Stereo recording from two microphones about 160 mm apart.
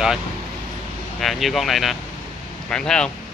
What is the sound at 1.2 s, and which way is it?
Speech, centre (ahead or behind).